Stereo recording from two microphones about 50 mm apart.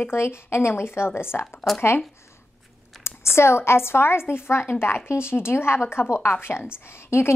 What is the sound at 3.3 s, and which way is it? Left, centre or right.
A woman's voice, left.